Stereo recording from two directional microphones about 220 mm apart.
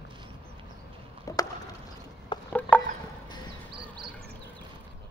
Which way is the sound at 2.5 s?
5° left (ahead or behind).